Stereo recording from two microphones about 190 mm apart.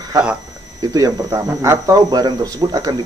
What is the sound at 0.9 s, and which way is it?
Speech, 20° right (ahead or behind).